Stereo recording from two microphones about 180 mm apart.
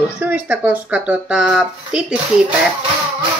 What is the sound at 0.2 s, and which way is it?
Speech, 10° right (ahead or behind).